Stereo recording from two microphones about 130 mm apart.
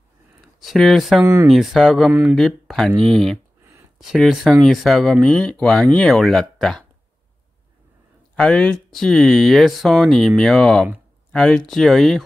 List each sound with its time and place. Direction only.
0.6 s speech: centre (ahead or behind)
1.2 s speech: 20° right (ahead or behind)
1.5 s speech: centre (ahead or behind)
8.4 s speech: 5° left (ahead or behind)